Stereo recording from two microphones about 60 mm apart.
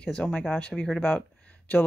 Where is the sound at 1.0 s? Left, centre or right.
Left.